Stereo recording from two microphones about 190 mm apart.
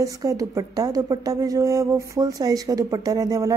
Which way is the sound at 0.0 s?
15° right (ahead or behind).